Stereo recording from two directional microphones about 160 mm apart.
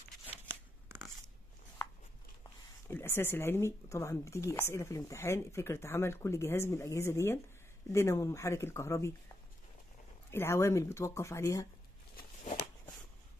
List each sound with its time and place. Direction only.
0.5 s a sound: 15° right (ahead or behind)
2.4 s speech: 15° left (ahead or behind)
10.3 s speech: 15° left (ahead or behind)